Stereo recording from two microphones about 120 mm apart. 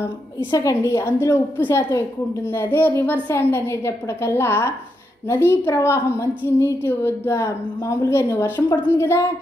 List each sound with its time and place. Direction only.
0.5 s a woman's voice: 30° left (ahead or behind)